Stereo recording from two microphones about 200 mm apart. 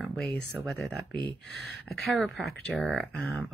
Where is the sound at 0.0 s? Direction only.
Centre (ahead or behind).